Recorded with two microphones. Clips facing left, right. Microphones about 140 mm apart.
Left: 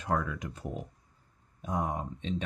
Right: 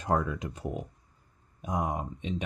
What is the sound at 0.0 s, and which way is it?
Speech, 25° right (ahead or behind).